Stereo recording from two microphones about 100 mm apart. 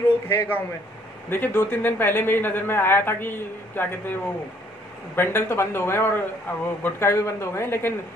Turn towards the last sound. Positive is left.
turn(degrees=25)  # may be behind; listen again after turning